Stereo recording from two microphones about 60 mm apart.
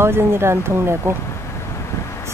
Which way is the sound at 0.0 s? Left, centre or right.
Right.